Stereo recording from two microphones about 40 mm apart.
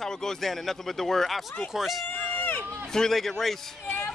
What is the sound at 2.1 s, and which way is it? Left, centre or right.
Run, left.